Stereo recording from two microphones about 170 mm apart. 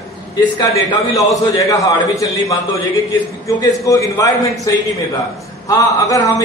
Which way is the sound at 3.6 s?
20° left (ahead or behind).